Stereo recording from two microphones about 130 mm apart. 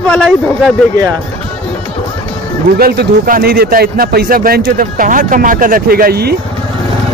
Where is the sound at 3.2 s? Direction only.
90° right.